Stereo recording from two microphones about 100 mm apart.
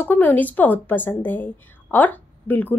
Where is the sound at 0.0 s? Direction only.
20° left (ahead or behind).